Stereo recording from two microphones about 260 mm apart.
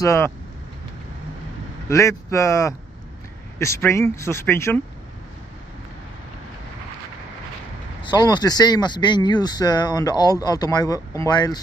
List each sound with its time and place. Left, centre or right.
0.0 s speech: centre
1.9 s speech: centre
8.0 s speech: centre